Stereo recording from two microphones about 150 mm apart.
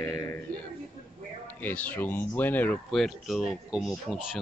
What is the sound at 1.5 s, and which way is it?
Speech, 10° left (ahead or behind).